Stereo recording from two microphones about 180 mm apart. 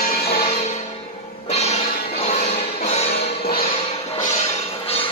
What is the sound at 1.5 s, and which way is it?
Music, 35° left (ahead or behind).